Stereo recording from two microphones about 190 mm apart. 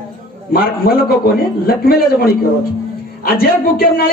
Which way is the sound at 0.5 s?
50° left (ahead or behind).